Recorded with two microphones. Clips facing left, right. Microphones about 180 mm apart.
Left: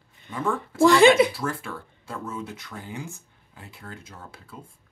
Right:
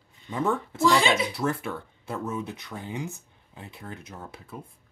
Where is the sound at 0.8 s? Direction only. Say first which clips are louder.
Left 7 dB; 55° left (ahead or behind).